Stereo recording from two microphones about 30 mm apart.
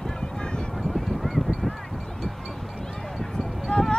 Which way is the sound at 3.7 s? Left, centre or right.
Left.